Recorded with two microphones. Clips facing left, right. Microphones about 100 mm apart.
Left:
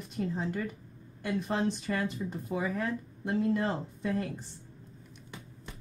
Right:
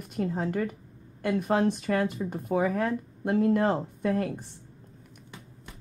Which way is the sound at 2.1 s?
55° right (ahead or behind).